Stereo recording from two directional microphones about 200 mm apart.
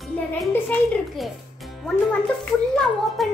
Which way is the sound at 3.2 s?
Centre (ahead or behind).